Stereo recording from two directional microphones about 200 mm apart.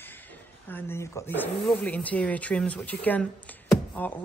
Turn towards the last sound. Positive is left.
turn(degrees=10)  # may be behind; listen again after turning